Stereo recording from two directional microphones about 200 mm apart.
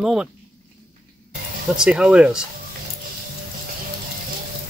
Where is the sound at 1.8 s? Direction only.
5° right (ahead or behind).